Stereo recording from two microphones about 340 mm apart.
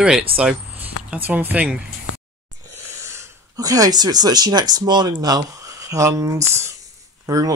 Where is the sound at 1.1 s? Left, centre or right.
Centre.